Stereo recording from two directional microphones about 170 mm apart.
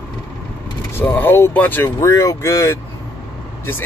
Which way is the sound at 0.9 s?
10° left (ahead or behind).